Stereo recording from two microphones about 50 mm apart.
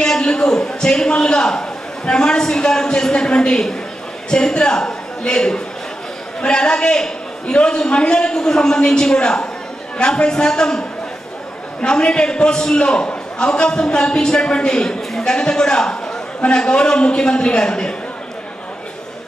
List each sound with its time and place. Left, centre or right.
0.0 s a man's voice: centre